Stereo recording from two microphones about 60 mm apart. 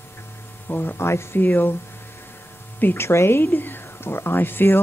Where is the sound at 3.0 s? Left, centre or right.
Left.